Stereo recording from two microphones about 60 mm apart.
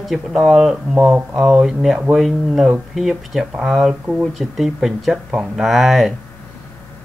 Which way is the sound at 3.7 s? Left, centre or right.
Centre.